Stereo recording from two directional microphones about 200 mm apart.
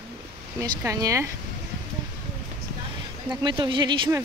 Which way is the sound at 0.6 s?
15° right (ahead or behind).